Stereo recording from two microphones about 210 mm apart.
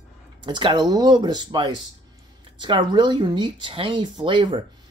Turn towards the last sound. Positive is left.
turn(degrees=-25)  # may be behind; listen again after turning